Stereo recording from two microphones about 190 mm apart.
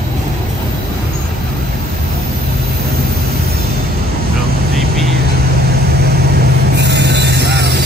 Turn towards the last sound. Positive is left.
turn(degrees=-60)  # may be behind; listen again after turning